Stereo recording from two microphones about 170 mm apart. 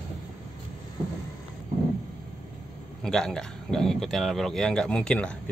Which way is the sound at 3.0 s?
5° left (ahead or behind).